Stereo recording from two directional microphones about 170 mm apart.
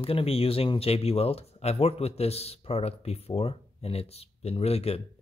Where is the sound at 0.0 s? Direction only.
35° left (ahead or behind).